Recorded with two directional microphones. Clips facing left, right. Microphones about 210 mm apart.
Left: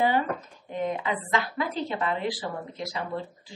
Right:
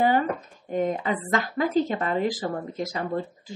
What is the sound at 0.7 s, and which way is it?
Speech, 45° right (ahead or behind).